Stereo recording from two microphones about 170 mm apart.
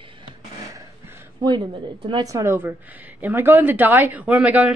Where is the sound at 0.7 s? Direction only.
15° right (ahead or behind).